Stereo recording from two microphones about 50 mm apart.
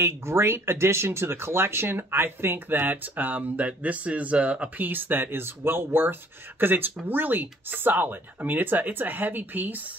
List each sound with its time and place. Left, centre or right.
0.0 s speech: right
4.8 s speech: right